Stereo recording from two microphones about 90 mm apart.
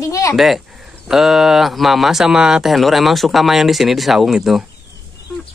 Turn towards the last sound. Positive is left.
turn(degrees=-5)  # may be behind; listen again after turning